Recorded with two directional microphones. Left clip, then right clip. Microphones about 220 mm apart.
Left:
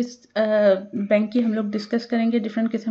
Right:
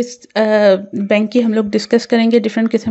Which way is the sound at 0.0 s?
40° right (ahead or behind).